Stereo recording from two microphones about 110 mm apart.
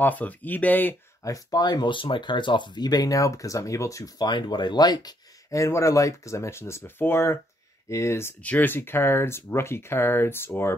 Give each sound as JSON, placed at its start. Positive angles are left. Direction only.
{"t": 0.0, "sound": "speech", "side_deg": 15}
{"t": 1.2, "sound": "speech", "side_deg": 30}